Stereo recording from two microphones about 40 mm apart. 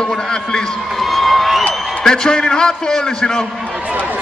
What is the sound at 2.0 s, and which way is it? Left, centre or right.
A man's voice, centre.